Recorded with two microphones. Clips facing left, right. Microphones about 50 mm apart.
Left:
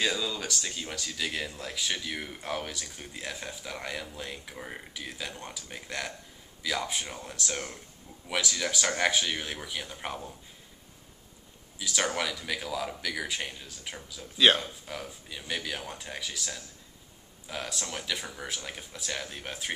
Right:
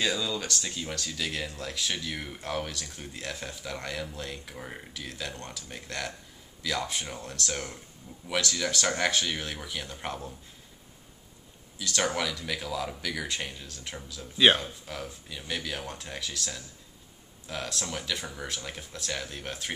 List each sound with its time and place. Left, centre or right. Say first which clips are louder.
0.0 s speech: right 1 dB; centre
11.8 s speech: right 1 dB; centre